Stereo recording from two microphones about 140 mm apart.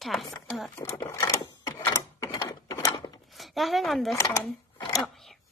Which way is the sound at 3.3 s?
Centre (ahead or behind).